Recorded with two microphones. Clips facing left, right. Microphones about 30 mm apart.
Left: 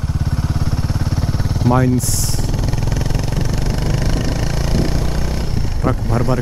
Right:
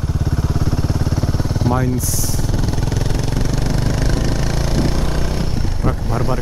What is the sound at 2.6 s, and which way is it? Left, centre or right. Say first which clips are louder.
Vehicle: even; centre.